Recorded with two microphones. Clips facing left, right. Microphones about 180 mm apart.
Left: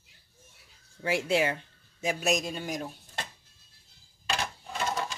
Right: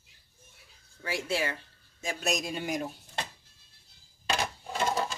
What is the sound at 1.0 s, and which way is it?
Speech, 20° left (ahead or behind).